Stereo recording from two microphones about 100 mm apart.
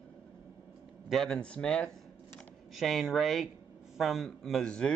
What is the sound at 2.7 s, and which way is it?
Speech, centre (ahead or behind).